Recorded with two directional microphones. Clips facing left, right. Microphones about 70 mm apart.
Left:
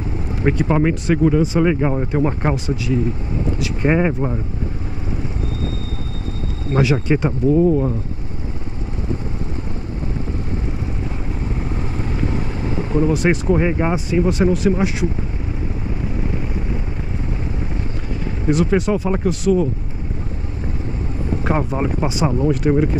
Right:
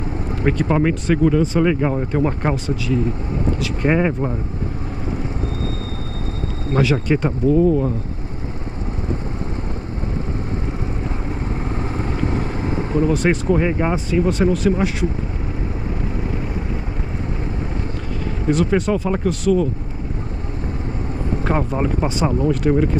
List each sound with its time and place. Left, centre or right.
0.4 s speech: centre
6.7 s speech: centre
12.0 s vehicle: right
13.1 s speech: centre
18.5 s speech: centre
21.5 s speech: centre